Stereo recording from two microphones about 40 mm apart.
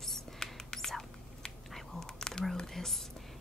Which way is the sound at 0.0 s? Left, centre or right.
Centre.